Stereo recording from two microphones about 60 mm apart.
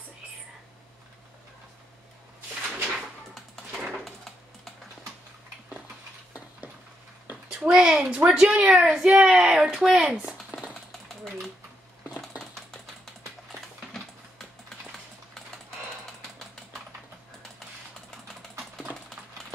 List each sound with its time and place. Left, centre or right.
3.3 s a sound: centre
7.2 s speech: right
11.1 s typewriter: centre